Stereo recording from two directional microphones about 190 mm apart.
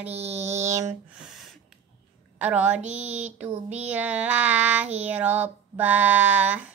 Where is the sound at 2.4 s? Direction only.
5° right (ahead or behind).